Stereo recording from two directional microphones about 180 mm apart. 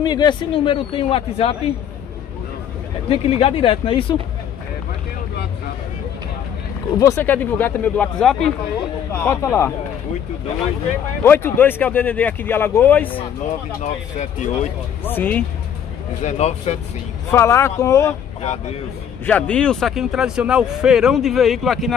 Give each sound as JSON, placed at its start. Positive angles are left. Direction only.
{"t": 0.0, "sound": "speech", "side_deg": 25}
{"t": 3.1, "sound": "speech", "side_deg": 35}
{"t": 7.0, "sound": "speech", "side_deg": 15}
{"t": 11.2, "sound": "speech", "side_deg": 10}
{"t": 13.7, "sound": "speech", "side_deg": 40}
{"t": 15.0, "sound": "speech", "side_deg": 10}
{"t": 16.2, "sound": "speech", "side_deg": 35}
{"t": 17.3, "sound": "speech", "side_deg": 15}
{"t": 19.2, "sound": "speech", "side_deg": 5}